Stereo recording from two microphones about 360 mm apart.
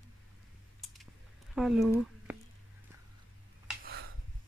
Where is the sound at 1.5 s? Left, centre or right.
Centre.